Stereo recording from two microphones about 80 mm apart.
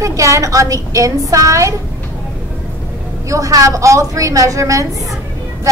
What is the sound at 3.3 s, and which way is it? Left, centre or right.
A woman's voice, right.